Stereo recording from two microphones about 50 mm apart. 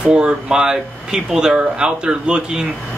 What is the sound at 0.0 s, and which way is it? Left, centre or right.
Speech, centre.